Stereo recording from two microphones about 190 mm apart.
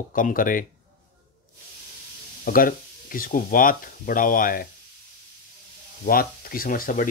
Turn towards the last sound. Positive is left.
turn(degrees=45)  # may be behind; listen again after turning